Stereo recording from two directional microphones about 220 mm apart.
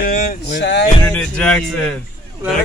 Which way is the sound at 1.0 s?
5° left (ahead or behind).